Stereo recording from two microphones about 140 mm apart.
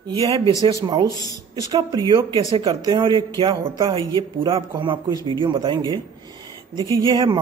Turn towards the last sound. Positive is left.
turn(degrees=-35)  # may be behind; listen again after turning